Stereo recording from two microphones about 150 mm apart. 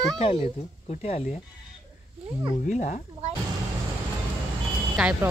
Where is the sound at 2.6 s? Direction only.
60° left (ahead or behind).